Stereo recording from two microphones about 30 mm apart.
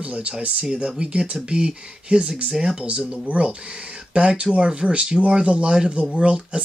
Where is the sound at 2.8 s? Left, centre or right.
Right.